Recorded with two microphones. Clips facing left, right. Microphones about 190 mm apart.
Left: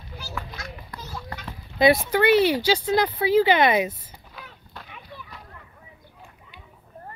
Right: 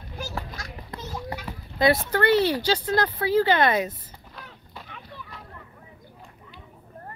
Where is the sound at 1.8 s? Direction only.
15° left (ahead or behind).